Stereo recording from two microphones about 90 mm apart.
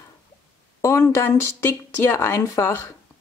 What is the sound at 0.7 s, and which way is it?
A woman's voice, 30° left (ahead or behind).